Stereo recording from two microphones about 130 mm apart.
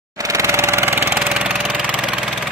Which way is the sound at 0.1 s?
25° right (ahead or behind).